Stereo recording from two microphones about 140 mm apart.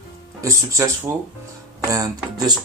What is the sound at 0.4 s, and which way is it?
Speech, 20° right (ahead or behind).